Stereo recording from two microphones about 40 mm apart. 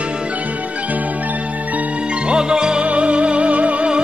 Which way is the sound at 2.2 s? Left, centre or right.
Right.